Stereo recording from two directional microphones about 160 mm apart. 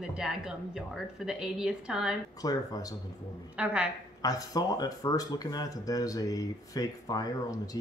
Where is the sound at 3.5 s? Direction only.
10° right (ahead or behind).